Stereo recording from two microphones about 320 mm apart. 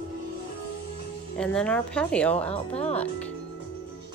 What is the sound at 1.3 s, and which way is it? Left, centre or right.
A woman's voice, centre.